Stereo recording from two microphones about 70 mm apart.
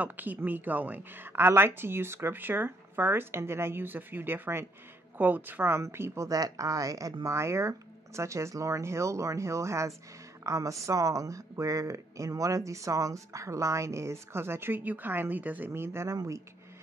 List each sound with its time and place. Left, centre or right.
0.0 s speech: right
6.2 s speech: right
7.2 s speech: right
15.7 s speech: right